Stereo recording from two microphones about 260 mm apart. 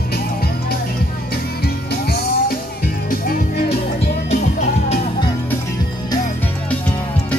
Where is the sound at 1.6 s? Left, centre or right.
Left.